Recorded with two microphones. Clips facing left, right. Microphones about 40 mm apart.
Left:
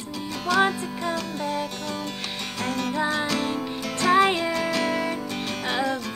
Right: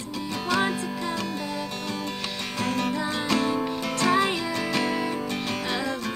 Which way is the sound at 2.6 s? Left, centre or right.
Centre.